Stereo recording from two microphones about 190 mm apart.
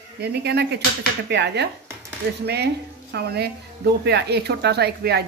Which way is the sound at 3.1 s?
60° right (ahead or behind).